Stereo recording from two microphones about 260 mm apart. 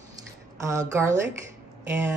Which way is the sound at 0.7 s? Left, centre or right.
Centre.